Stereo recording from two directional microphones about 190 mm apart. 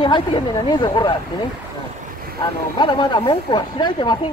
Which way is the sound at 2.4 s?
25° left (ahead or behind).